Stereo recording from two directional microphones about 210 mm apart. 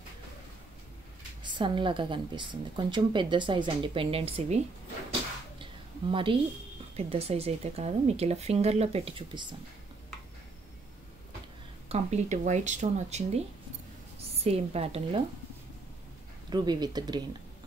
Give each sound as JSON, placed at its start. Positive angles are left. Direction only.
{"t": 1.4, "sound": "a woman's voice", "side_deg": -20}
{"t": 5.6, "sound": "a sound", "side_deg": -25}
{"t": 7.0, "sound": "a woman's voice", "side_deg": -30}
{"t": 11.9, "sound": "speech", "side_deg": -30}
{"t": 14.4, "sound": "a woman's voice", "side_deg": -30}
{"t": 16.4, "sound": "a woman's voice", "side_deg": -20}